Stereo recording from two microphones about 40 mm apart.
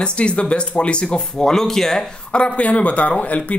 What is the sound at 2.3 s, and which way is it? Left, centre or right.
A man's voice, left.